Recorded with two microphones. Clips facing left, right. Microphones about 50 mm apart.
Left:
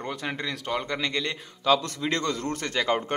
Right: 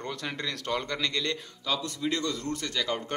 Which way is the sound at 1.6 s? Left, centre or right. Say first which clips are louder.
Left 7 dB; left.